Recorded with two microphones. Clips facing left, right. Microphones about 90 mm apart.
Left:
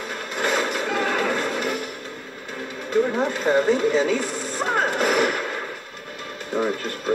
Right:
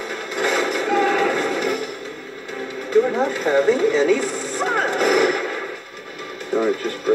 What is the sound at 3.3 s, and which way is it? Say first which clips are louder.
Speech: right 2 dB; 35° left (ahead or behind).